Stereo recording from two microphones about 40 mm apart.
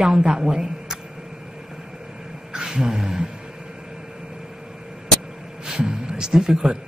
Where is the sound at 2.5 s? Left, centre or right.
Centre.